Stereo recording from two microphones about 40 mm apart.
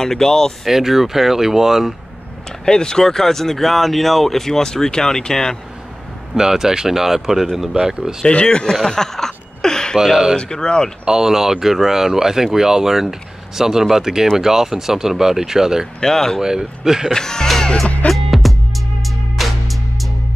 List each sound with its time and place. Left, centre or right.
0.0 s speech: centre
0.7 s speech: centre
2.6 s speech: centre
6.3 s speech: centre
8.3 s speech: left
8.7 s a sound: centre
9.9 s speech: centre
10.3 s speech: centre
11.1 s speech: centre
16.0 s speech: centre
16.3 s speech: centre
17.1 s speech: centre
18.0 s music: centre